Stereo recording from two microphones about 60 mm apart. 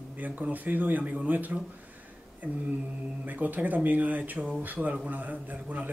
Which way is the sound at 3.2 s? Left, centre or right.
Right.